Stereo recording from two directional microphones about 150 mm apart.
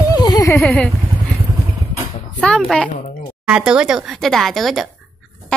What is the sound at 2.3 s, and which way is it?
Speech, 5° left (ahead or behind).